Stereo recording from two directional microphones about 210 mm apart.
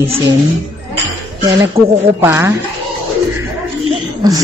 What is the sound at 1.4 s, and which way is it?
A man's voice, 15° right (ahead or behind).